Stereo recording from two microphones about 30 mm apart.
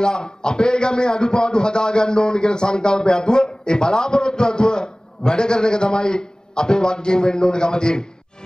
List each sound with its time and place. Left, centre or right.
0.0 s a man's voice: left